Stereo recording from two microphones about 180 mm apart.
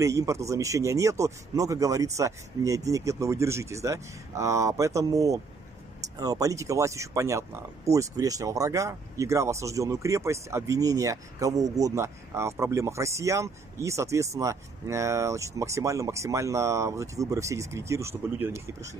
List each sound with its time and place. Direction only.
0.0 s speech: 15° right (ahead or behind)